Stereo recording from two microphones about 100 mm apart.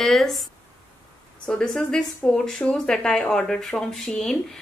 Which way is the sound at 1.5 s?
10° left (ahead or behind).